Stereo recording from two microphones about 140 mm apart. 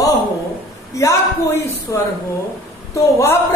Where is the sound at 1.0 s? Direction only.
20° left (ahead or behind).